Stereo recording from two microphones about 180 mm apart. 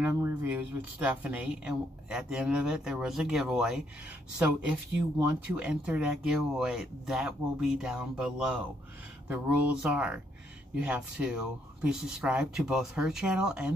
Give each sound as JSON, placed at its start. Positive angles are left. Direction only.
{"t": 0.0, "sound": "speech", "side_deg": -10}